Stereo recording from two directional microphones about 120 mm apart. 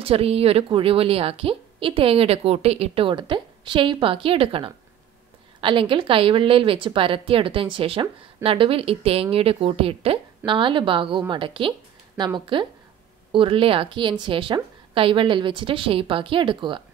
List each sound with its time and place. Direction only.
0.0 s a woman's voice: 55° right (ahead or behind)